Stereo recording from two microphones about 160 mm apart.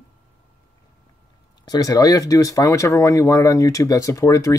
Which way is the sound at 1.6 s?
25° left (ahead or behind).